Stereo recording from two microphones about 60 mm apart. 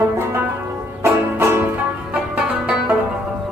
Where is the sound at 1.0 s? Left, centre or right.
Right.